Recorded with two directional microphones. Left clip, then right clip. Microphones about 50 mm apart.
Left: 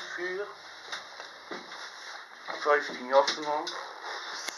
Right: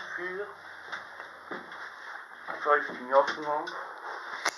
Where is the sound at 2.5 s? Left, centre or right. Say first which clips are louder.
Even; left.